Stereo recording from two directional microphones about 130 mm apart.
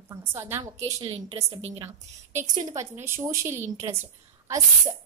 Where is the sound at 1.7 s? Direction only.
20° right (ahead or behind).